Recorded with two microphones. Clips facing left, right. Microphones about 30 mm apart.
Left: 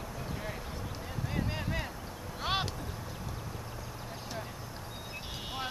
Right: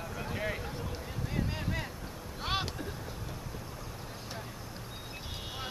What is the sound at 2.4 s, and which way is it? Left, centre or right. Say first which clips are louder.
Vehicle: left 1 dB; centre.